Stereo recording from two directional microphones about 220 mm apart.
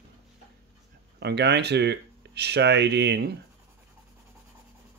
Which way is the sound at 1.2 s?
50° right (ahead or behind).